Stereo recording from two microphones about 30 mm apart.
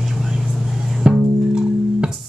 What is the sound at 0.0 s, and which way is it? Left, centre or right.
Vehicle, centre.